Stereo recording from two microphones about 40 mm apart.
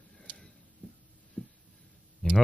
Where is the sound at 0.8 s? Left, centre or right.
Left.